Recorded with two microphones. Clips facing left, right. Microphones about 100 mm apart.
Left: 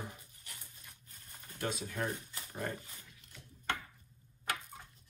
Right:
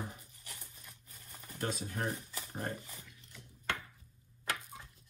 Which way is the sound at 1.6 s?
40° right (ahead or behind).